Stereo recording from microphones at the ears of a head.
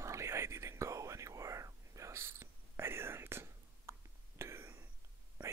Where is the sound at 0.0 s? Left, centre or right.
Right.